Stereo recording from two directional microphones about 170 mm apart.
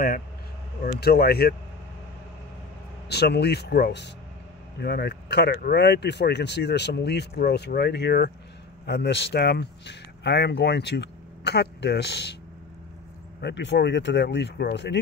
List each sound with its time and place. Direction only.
0.8 s speech: 65° left (ahead or behind)
3.1 s speech: 75° left (ahead or behind)
13.4 s speech: 85° left